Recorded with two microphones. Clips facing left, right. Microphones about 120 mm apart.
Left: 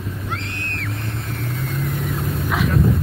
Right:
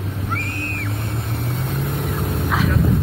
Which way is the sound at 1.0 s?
25° right (ahead or behind).